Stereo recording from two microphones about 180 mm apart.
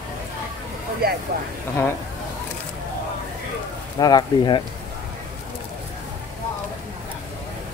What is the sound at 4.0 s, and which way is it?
Speech, 20° left (ahead or behind).